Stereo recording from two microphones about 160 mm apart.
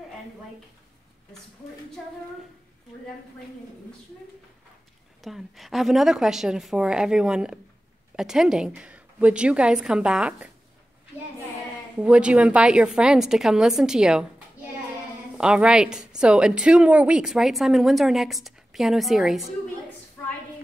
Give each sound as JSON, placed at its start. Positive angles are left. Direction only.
{"t": 5.2, "sound": "a woman's voice", "side_deg": 0}
{"t": 12.0, "sound": "a woman's voice", "side_deg": -5}
{"t": 15.3, "sound": "a woman's voice", "side_deg": -5}